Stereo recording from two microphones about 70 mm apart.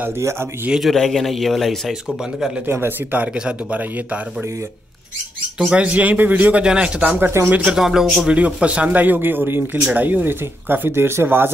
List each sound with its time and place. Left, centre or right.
0.2 s speech: right
0.7 s speech: centre
2.6 s speech: right
3.2 s speech: centre
5.6 s speech: centre
6.6 s speech: centre
7.2 s speech: right
7.6 s speech: centre
8.3 s speech: centre; by 11.5 s right